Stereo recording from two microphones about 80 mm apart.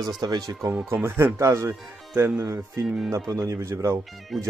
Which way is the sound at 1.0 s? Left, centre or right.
Right.